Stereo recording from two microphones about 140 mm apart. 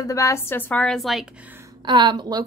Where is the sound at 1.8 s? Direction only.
35° right (ahead or behind).